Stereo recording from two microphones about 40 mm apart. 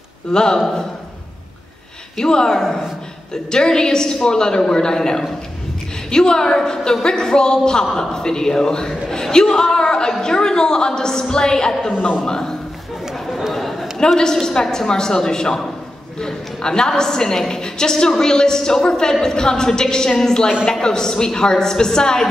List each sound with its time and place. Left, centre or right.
0.3 s speech: centre
2.2 s a woman's voice: centre
9.6 s a sound: centre
10.2 s a woman's voice: centre
13.5 s a sound: centre
13.9 s a woman's voice: centre